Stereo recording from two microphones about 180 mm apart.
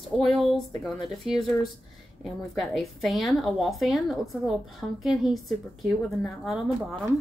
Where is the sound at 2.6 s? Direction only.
Centre (ahead or behind).